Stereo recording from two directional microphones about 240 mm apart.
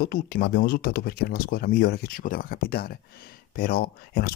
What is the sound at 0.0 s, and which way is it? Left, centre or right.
Speech, left.